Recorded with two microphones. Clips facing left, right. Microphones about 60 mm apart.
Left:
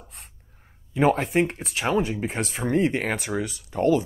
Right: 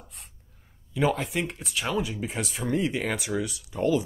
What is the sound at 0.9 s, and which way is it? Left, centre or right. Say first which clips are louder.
Speech: left 5 dB; left.